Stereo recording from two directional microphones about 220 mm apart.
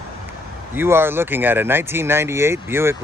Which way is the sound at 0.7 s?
10° right (ahead or behind).